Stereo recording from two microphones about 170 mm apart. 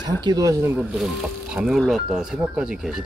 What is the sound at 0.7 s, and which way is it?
Speech, 5° right (ahead or behind).